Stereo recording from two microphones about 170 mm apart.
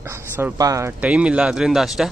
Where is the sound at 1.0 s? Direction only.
5° right (ahead or behind).